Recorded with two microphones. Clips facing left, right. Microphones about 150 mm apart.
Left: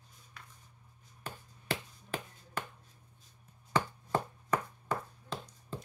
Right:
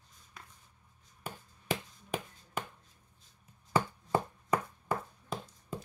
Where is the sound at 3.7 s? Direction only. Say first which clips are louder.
Right 2 dB; 10° right (ahead or behind).